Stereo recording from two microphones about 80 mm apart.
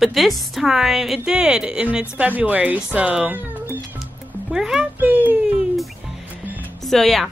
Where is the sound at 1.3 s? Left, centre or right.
Centre.